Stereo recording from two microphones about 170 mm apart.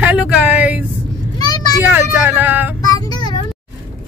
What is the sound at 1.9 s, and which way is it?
Speech, 10° right (ahead or behind).